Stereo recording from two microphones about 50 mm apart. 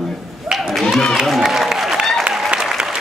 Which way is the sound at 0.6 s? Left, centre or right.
Centre.